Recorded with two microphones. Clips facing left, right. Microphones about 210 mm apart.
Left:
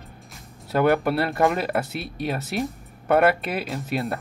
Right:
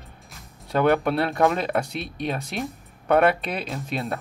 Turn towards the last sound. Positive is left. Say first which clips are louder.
# left 2 dB
turn(degrees=0)  # may be behind; listen again after turning